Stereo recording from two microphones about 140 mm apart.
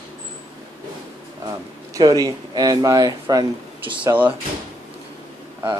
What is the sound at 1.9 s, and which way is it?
Speech, 25° right (ahead or behind).